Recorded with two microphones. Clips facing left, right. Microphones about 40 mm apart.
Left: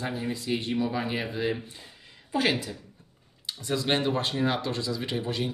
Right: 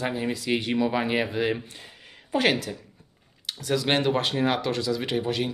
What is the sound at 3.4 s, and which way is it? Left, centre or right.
Speech, right.